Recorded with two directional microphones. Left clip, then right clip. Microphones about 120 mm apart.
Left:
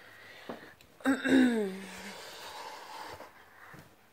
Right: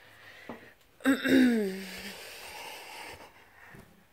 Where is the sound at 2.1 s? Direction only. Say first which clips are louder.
Right 1 dB; 45° right (ahead or behind).